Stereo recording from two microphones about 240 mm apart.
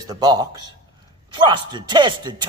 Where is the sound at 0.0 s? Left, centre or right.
Centre.